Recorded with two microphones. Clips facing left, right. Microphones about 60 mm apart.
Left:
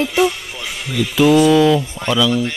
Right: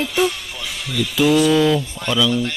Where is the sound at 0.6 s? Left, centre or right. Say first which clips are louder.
Left 3 dB; left.